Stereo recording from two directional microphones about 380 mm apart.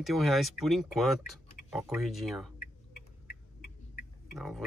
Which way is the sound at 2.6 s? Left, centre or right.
Left.